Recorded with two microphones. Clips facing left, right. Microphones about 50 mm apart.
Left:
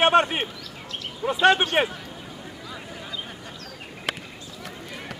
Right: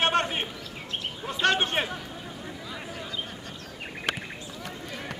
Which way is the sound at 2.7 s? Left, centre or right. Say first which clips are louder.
Left 1 dB; centre.